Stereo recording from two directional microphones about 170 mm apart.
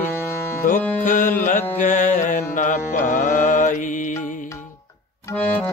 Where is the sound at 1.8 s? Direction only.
50° left (ahead or behind).